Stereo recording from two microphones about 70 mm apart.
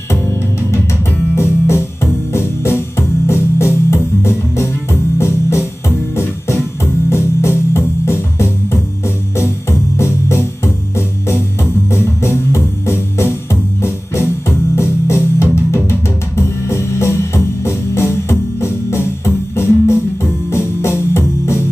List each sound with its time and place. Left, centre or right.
0.1 s music: left